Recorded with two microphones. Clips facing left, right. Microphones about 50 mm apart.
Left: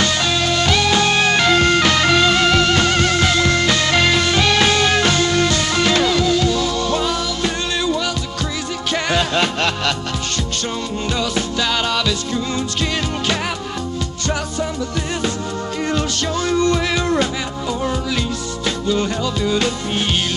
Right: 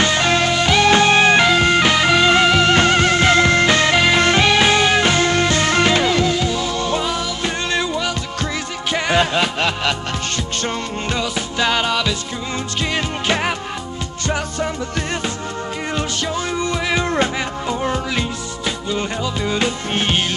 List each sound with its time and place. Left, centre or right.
0.0 s music: right
0.6 s music: centre
0.8 s music: right
3.9 s music: centre
4.2 s music: right
4.5 s music: centre
10.6 s music: right
15.9 s music: right
17.0 s music: right
18.9 s music: right